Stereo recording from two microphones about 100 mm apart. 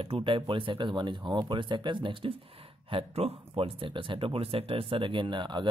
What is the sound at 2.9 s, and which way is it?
Speech, 75° right (ahead or behind).